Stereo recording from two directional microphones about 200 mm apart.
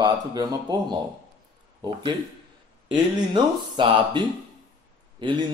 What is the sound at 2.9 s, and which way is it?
Speech, 25° right (ahead or behind).